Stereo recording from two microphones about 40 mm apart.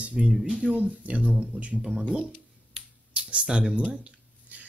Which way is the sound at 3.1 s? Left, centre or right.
Right.